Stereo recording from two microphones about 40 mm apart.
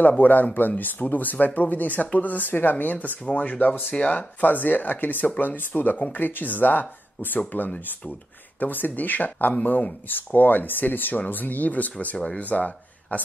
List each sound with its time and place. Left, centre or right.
0.2 s speech: left
10.0 s speech: left